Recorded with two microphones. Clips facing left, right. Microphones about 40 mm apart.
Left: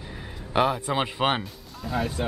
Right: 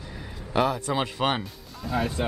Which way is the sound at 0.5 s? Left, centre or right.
Centre.